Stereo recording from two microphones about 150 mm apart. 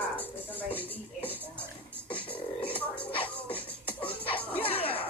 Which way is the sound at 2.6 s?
10° left (ahead or behind).